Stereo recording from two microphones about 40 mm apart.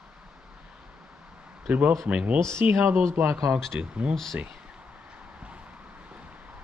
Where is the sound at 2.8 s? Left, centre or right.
Right.